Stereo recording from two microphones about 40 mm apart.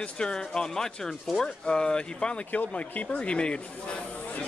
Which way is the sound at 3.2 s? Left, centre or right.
Left.